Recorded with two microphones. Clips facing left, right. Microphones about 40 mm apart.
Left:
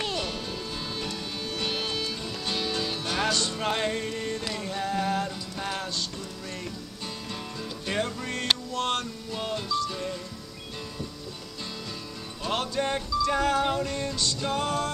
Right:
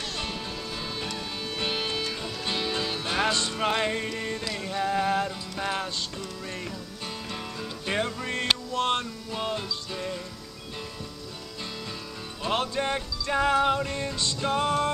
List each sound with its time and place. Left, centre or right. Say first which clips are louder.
0.9 s music: even; centre
7.8 s music: right 1 dB; centre
9.3 s music: left 1 dB; centre
12.4 s music: right 1 dB; centre